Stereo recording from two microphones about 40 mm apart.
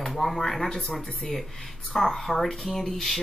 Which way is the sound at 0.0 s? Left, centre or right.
Centre.